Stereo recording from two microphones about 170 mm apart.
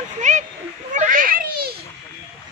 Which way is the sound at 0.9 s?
50° right (ahead or behind).